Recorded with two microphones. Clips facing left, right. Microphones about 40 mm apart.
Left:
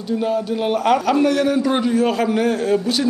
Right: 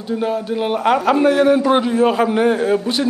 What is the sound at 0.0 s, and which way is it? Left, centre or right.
A man's voice, centre.